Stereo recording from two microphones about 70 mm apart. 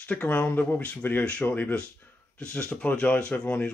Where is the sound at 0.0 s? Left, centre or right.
Centre.